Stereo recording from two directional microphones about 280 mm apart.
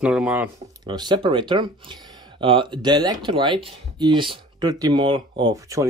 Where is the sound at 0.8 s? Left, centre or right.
Centre.